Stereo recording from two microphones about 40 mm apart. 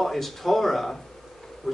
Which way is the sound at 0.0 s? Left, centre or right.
Centre.